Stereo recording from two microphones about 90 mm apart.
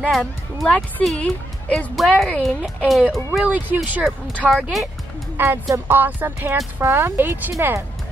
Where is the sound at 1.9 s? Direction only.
5° left (ahead or behind).